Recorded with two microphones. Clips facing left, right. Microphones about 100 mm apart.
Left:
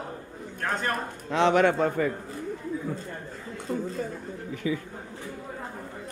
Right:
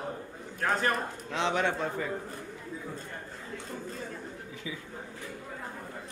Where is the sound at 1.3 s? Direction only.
60° left (ahead or behind).